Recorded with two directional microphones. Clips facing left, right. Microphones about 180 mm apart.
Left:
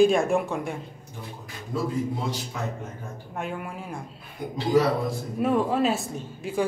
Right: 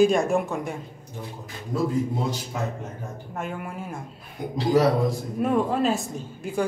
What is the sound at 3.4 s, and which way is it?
Speech, centre (ahead or behind).